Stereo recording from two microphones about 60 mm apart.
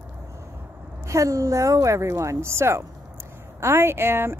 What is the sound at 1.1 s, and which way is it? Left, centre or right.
Speech, right.